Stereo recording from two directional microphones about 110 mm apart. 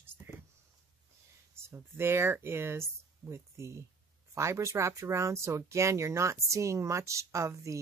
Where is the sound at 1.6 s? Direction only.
20° right (ahead or behind).